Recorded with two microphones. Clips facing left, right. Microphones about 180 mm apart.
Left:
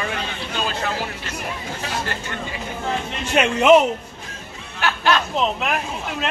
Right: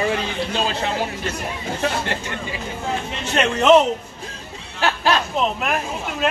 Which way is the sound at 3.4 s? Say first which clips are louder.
Left 1 dB; 10° left (ahead or behind).